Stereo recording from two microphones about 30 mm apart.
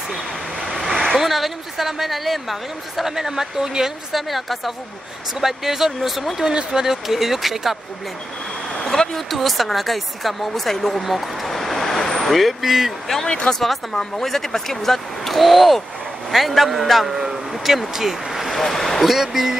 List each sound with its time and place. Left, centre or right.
0.7 s vehicle: centre
1.1 s a woman's voice: centre
4.1 s speech: centre
6.5 s speech: centre
8.9 s vehicle: centre
9.3 s speech: centre
11.0 s vehicle: centre
12.6 s speech: centre
13.3 s speech: left
14.2 s speech: centre
18.5 s speech: centre
19.0 s speech: centre